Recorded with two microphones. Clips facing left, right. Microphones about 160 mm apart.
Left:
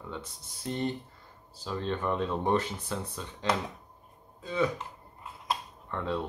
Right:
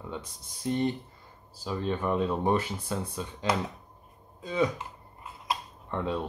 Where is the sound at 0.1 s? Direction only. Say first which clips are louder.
Right 2 dB; 15° right (ahead or behind).